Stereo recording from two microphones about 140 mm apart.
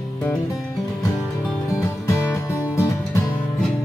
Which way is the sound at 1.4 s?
5° left (ahead or behind).